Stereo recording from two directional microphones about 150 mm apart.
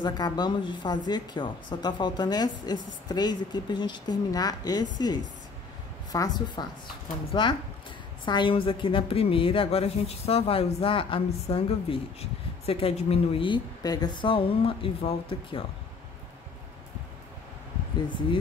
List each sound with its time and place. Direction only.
0.0 s a woman's voice: 30° left (ahead or behind)